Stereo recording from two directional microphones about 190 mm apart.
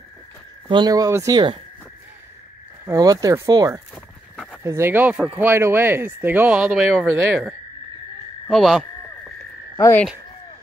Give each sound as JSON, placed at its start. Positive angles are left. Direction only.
{"t": 0.7, "sound": "speech", "side_deg": -20}
{"t": 2.8, "sound": "speech", "side_deg": -15}
{"t": 3.9, "sound": "a sound", "side_deg": 0}
{"t": 4.6, "sound": "speech", "side_deg": -15}
{"t": 9.8, "sound": "frog", "side_deg": 15}